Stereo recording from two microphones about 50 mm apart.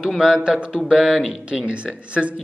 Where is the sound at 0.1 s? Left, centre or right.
Centre.